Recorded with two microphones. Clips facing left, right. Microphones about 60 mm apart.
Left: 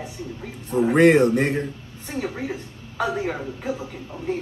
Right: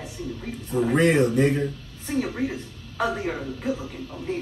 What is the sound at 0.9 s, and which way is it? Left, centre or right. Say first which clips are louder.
Speech: left 5 dB; left.